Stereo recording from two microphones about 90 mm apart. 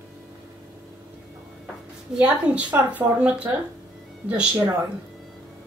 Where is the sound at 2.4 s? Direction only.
15° right (ahead or behind).